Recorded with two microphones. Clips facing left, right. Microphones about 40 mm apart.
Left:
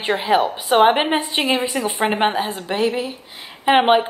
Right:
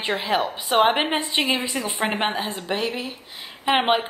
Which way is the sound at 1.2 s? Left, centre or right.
Left.